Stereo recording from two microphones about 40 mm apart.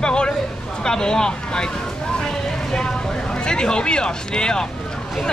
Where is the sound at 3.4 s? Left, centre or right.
Left.